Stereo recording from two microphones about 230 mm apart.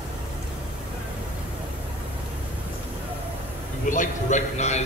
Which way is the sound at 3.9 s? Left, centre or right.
Left.